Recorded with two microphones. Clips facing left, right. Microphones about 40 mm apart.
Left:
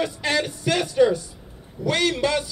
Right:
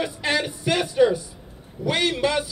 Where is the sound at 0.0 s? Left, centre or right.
Centre.